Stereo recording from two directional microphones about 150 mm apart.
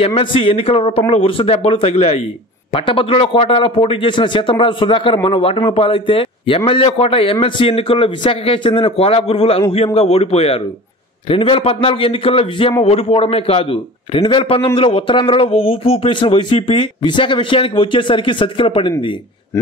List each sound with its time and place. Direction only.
0.0 s speech: 40° left (ahead or behind)